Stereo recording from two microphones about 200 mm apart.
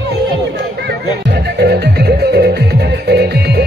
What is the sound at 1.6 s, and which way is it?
Music, 55° right (ahead or behind).